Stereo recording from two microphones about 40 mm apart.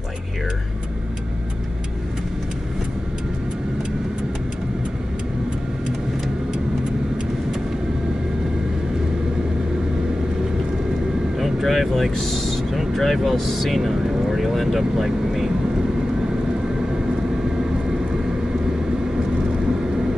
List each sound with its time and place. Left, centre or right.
11.3 s vehicle: centre